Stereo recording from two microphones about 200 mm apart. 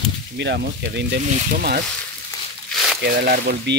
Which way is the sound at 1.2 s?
35° right (ahead or behind).